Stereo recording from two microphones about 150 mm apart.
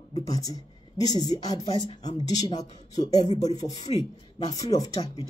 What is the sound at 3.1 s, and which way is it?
Speech, 45° left (ahead or behind).